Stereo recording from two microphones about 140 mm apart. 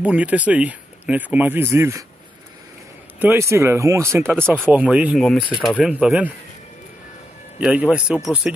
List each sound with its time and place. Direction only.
0.0 s speech: 10° right (ahead or behind)
3.2 s speech: 15° right (ahead or behind)
7.6 s speech: 5° right (ahead or behind)